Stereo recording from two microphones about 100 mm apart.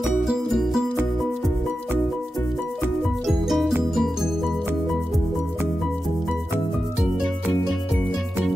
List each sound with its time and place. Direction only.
0.2 s music: centre (ahead or behind)
3.3 s music: centre (ahead or behind)